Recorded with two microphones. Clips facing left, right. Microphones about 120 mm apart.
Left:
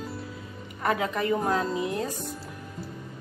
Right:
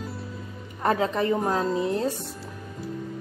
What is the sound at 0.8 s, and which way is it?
Speech, 30° right (ahead or behind).